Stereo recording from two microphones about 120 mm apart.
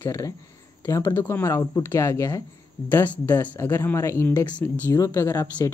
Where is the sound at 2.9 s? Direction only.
15° left (ahead or behind).